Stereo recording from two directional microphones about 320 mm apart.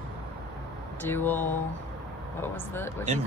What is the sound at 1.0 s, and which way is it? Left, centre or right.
Speech, centre.